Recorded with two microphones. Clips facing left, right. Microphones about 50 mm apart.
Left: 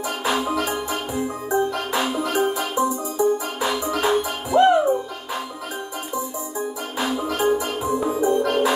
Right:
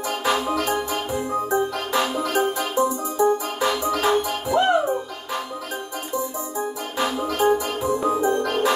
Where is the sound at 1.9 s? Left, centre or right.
Centre.